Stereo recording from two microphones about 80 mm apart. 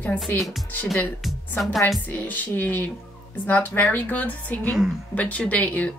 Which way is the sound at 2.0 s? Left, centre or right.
Left.